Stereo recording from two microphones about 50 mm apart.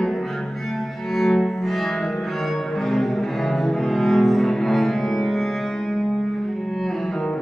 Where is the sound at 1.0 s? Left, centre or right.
Centre.